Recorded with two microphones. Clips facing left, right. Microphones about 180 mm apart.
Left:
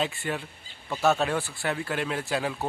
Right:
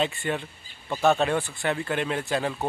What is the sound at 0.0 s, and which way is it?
A man's voice, centre (ahead or behind).